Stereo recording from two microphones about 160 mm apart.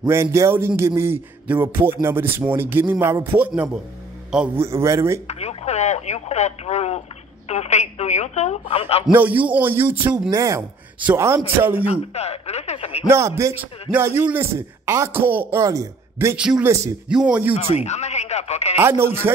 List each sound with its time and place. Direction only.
0.1 s a man's voice: 15° right (ahead or behind)
4.6 s a man's voice: 15° right (ahead or behind)
5.2 s speech: 40° left (ahead or behind)
9.0 s a man's voice: 10° right (ahead or behind)
11.9 s speech: 40° left (ahead or behind)
13.1 s a man's voice: 15° right (ahead or behind)
16.3 s a man's voice: 5° right (ahead or behind)
16.6 s speech: 20° right (ahead or behind)
17.1 s a man's voice: 5° right (ahead or behind)
17.6 s speech: 40° left (ahead or behind)
18.8 s a man's voice: 15° right (ahead or behind)